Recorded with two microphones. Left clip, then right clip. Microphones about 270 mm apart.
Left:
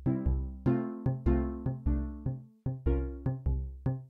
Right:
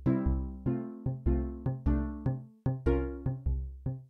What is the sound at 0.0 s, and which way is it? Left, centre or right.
Music, right.